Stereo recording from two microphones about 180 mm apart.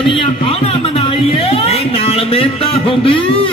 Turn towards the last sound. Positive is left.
turn(degrees=30)  # may be behind; listen again after turning